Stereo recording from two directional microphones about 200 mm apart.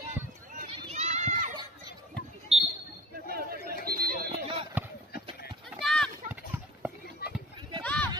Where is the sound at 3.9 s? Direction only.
50° right (ahead or behind).